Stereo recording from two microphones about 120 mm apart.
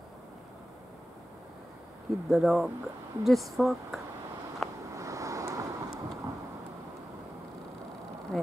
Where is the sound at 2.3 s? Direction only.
5° right (ahead or behind).